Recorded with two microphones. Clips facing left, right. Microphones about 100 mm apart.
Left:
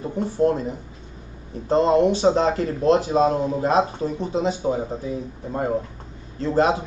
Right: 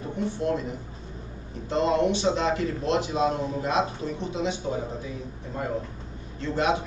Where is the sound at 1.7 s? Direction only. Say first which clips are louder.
Left 6 dB; 40° left (ahead or behind).